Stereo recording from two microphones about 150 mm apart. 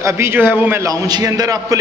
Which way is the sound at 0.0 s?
15° right (ahead or behind).